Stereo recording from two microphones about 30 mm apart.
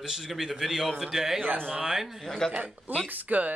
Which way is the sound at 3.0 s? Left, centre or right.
Right.